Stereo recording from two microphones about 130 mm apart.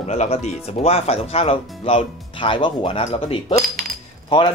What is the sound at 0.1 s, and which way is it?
Speech, 60° left (ahead or behind).